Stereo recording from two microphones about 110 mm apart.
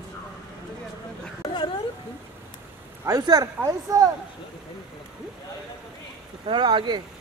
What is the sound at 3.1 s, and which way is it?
Speech, 35° right (ahead or behind).